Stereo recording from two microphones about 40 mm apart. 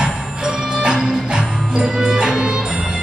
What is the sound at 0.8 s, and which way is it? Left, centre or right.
Music, right.